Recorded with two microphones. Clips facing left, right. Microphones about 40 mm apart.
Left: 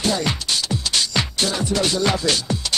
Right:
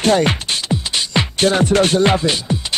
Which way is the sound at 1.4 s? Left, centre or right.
Right.